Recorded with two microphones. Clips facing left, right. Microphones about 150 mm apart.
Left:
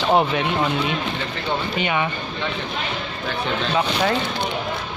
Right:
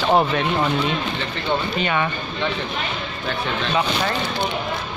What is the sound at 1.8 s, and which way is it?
Speech, 15° left (ahead or behind).